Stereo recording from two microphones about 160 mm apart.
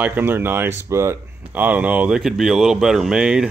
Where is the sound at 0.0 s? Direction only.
10° right (ahead or behind).